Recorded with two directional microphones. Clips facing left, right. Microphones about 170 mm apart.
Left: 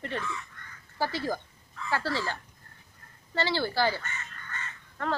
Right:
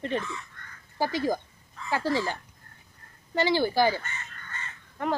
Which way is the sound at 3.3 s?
15° right (ahead or behind).